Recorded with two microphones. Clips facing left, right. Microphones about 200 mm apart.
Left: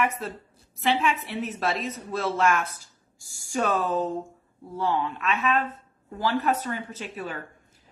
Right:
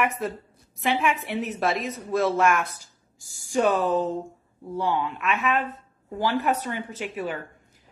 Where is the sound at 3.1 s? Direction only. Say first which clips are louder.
Right 4 dB; 15° right (ahead or behind).